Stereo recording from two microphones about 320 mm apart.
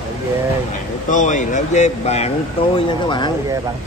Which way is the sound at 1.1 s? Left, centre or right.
Left.